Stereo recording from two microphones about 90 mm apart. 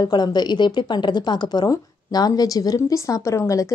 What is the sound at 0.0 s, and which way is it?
A woman's voice, 50° left (ahead or behind).